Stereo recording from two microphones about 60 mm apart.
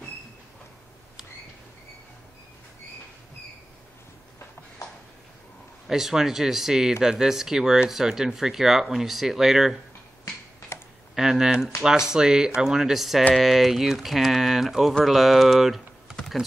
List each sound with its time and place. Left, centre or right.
5.9 s speech: centre
10.7 s computer keyboard: left
11.1 s speech: centre